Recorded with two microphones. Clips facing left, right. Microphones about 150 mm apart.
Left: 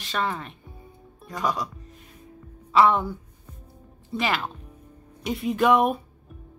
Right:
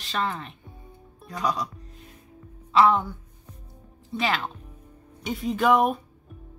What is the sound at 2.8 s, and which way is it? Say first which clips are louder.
Speech: even; centre (ahead or behind).